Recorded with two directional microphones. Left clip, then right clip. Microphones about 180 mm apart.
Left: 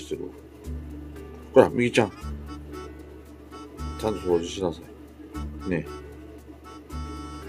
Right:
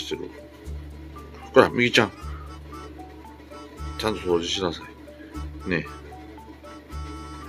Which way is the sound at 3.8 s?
Centre (ahead or behind).